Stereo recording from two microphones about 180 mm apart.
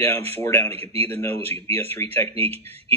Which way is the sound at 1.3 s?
35° right (ahead or behind).